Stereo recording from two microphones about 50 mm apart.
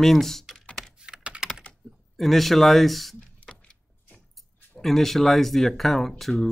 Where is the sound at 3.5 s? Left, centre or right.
Centre.